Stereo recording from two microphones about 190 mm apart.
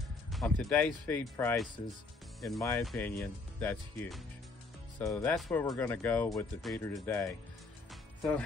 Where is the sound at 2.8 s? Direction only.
5° left (ahead or behind).